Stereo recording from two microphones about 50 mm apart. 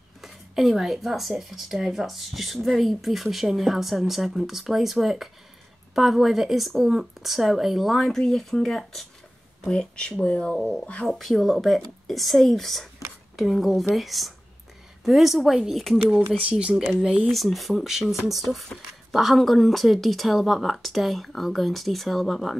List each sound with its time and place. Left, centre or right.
0.2 s speech: centre
9.7 s speech: centre
11.1 s speech: centre
16.3 s speech: right
17.3 s speech: centre